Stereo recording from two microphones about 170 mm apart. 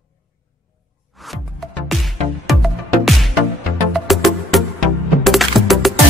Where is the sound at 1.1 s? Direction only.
Centre (ahead or behind).